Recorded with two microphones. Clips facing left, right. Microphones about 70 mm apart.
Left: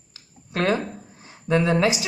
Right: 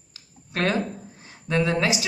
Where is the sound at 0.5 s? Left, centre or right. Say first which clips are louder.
Left 2 dB; left.